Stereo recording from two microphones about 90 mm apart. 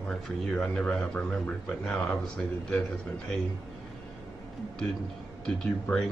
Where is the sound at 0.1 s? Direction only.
5° left (ahead or behind).